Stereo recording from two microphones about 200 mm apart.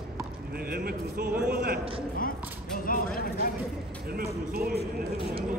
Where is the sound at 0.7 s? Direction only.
50° right (ahead or behind).